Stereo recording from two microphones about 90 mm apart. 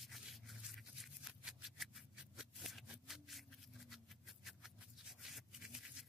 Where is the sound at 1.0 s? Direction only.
5° right (ahead or behind).